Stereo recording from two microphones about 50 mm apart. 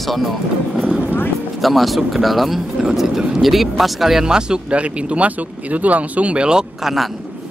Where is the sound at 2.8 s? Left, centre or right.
Centre.